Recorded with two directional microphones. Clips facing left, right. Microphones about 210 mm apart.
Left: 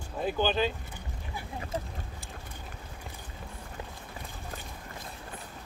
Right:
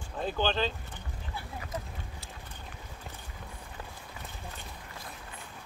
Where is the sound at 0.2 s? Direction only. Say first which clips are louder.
Left 2 dB; 10° left (ahead or behind).